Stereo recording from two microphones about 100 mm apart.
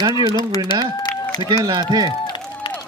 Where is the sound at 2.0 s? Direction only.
45° left (ahead or behind).